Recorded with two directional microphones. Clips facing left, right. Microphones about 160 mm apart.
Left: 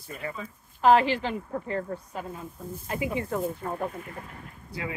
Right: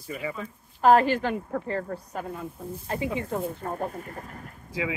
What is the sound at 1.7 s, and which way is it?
Speech, 40° right (ahead or behind).